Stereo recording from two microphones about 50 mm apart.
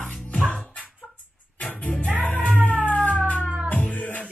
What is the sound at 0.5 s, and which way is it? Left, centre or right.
Dog, left.